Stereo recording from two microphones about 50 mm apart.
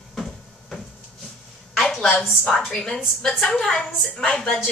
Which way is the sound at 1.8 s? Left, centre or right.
Centre.